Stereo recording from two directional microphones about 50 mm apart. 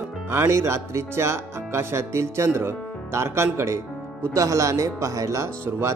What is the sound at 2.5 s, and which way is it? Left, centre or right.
Speech, right.